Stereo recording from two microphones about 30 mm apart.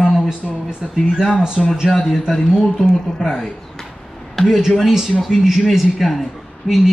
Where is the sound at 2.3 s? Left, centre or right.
Centre.